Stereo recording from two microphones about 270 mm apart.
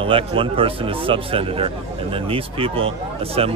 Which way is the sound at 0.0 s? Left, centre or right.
Centre.